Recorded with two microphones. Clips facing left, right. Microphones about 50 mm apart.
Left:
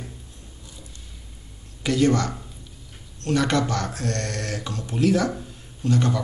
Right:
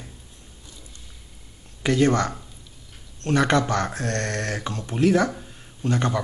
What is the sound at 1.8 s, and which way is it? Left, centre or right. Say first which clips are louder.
Speech: right 1 dB; right.